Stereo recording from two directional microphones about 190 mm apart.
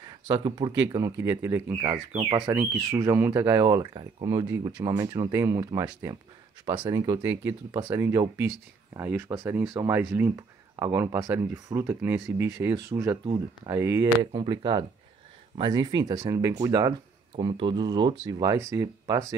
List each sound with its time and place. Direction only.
0.0 s speech: 25° right (ahead or behind)